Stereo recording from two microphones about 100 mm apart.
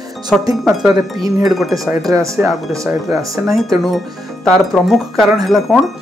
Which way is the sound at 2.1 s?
30° right (ahead or behind).